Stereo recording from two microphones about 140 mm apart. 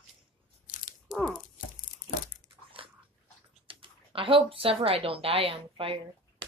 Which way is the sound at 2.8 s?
40° right (ahead or behind).